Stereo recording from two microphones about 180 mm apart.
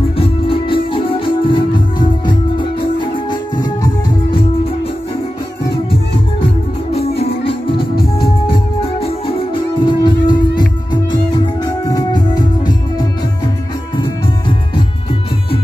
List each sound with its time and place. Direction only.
0.5 s music: 30° left (ahead or behind)
6.9 s music: 35° left (ahead or behind)